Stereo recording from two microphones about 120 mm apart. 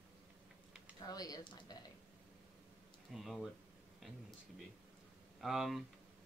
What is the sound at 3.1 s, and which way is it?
Speech, centre (ahead or behind).